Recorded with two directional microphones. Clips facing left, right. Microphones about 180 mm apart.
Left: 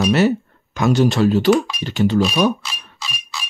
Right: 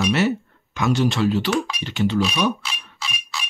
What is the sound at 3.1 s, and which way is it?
Music, centre (ahead or behind).